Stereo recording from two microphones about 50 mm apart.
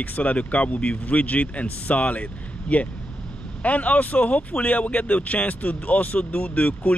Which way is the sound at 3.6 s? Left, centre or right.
Left.